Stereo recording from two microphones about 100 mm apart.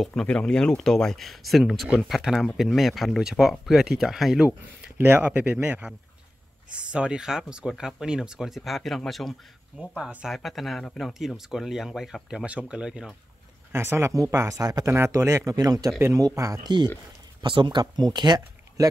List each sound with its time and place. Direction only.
0.0 s speech: 5° left (ahead or behind)
4.9 s speech: 20° right (ahead or behind)
13.7 s speech: 25° right (ahead or behind)
14.9 s a man's voice: 25° right (ahead or behind)
16.6 s speech: 45° right (ahead or behind)